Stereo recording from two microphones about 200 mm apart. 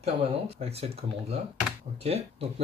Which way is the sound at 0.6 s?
30° right (ahead or behind).